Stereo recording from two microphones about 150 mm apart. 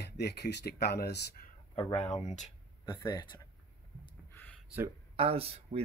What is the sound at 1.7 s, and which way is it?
Speech, 35° left (ahead or behind).